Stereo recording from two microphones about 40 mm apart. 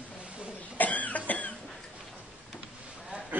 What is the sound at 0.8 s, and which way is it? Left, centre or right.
Cough, left.